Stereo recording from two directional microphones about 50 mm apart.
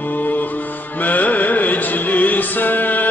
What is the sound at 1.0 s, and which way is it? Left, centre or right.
Music, left.